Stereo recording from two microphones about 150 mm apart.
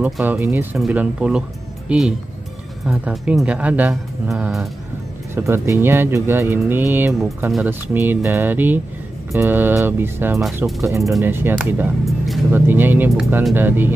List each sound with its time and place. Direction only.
0.0 s speech: 10° right (ahead or behind)
5.3 s speech: 15° right (ahead or behind)
7.1 s speech: centre (ahead or behind)
7.6 s speech: 15° right (ahead or behind)